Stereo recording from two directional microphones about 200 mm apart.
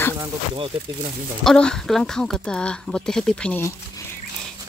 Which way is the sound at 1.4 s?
5° left (ahead or behind).